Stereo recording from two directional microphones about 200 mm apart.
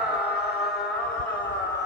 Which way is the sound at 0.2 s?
55° left (ahead or behind).